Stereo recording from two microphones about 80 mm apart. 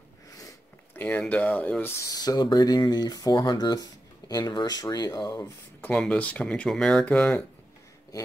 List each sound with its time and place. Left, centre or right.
1.0 s speech: left
2.1 s speech: left
5.9 s speech: centre